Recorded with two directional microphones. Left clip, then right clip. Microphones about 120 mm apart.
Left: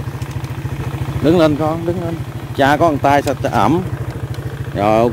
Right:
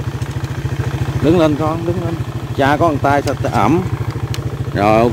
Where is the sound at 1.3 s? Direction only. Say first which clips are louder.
Left 1 dB; 50° left (ahead or behind); by 3.6 s 65° left (ahead or behind).